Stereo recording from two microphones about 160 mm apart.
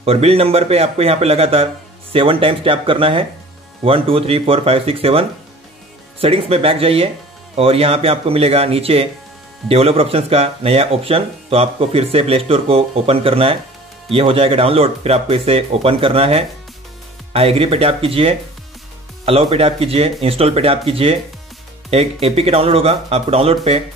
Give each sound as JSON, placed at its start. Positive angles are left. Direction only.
{"t": 0.0, "sound": "speech", "side_deg": -40}